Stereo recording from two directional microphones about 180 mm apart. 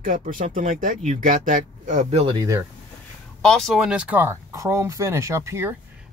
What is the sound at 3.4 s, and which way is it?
Speech, centre (ahead or behind).